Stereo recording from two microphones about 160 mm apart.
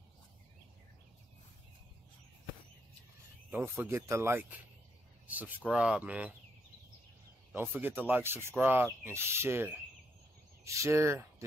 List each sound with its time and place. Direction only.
3.4 s speech: 15° right (ahead or behind)
7.5 s speech: 10° right (ahead or behind)